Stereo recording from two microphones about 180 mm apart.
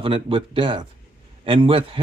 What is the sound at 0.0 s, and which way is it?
Speech, 30° right (ahead or behind).